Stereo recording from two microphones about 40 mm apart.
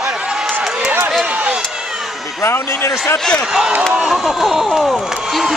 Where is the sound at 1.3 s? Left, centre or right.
Right.